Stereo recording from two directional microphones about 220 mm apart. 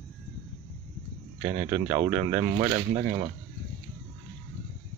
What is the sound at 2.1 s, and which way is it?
Speech, 15° right (ahead or behind).